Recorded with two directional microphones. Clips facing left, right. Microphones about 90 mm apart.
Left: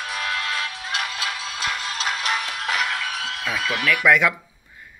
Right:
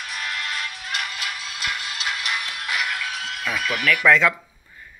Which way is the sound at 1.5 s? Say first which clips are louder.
Left 2 dB; 35° left (ahead or behind).